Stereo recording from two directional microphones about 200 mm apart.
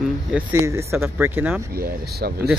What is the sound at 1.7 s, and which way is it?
Speech, 50° right (ahead or behind).